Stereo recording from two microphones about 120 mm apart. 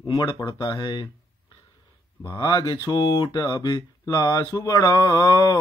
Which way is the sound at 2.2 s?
40° left (ahead or behind).